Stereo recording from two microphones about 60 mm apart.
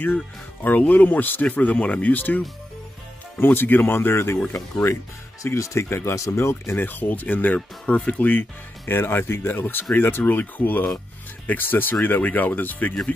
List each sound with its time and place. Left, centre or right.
0.7 s speech: left
5.4 s speech: left
6.9 s speech: left